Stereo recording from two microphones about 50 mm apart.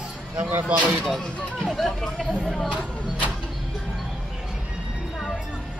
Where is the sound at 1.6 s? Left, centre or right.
Centre.